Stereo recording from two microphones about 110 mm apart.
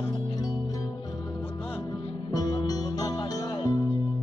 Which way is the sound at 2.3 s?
35° left (ahead or behind).